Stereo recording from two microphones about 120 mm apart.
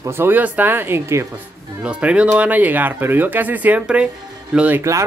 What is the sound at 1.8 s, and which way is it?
Speech, 10° right (ahead or behind).